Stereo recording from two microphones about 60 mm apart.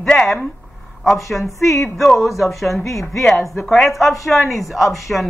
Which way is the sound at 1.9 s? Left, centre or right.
Centre.